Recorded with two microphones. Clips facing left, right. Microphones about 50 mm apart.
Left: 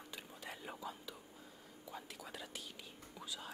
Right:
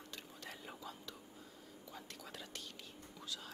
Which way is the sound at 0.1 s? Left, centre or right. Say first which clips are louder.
Left 2 dB; centre.